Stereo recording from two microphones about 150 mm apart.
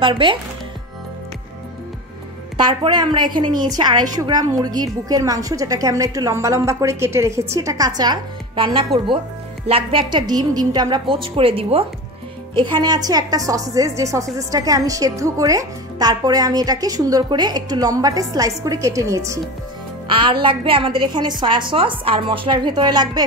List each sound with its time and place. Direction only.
0.0 s a woman's voice: 35° right (ahead or behind)
2.5 s a woman's voice: 35° right (ahead or behind)
20.1 s a woman's voice: 35° right (ahead or behind)